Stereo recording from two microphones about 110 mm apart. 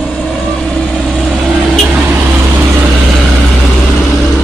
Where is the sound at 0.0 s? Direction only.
5° left (ahead or behind).